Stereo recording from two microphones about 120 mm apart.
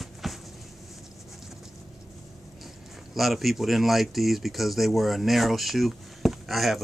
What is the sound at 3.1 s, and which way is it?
Speech, centre (ahead or behind).